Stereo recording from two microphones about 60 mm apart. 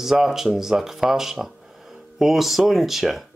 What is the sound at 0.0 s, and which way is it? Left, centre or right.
Speech, centre.